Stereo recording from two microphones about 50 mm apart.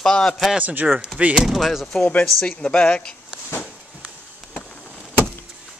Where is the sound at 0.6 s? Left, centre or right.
Right.